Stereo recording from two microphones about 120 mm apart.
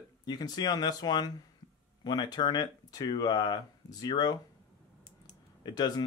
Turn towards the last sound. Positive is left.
turn(degrees=35)  # may be behind; listen again after turning